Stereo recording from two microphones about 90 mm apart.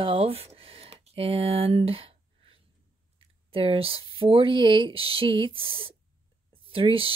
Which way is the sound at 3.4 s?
90° right.